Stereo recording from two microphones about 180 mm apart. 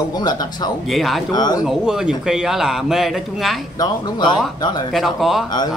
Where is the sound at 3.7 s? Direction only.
20° left (ahead or behind).